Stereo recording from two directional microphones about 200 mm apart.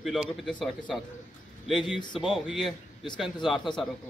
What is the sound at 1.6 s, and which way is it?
Speech, centre (ahead or behind).